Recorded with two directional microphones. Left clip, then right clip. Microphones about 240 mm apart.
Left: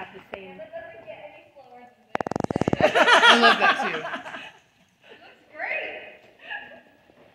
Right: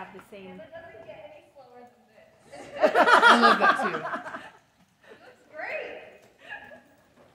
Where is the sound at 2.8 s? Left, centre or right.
Right.